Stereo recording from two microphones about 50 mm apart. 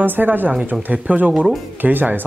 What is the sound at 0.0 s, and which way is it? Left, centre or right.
Speech, right.